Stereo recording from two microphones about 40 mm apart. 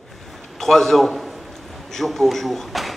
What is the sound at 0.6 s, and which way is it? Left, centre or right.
A man's voice, centre.